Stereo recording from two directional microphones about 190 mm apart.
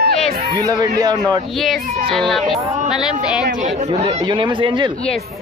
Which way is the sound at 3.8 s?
35° right (ahead or behind).